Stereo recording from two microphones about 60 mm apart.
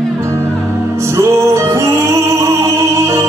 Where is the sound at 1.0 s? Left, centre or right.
Right.